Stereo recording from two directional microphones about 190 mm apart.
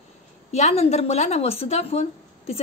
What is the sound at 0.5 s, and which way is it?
A woman's voice, 35° left (ahead or behind).